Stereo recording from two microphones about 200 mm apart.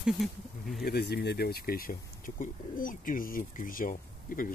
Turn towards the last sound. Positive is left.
turn(degrees=45)  # may be behind; listen again after turning